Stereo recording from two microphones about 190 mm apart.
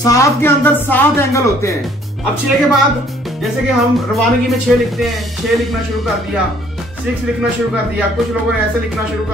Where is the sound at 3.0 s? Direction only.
Centre (ahead or behind).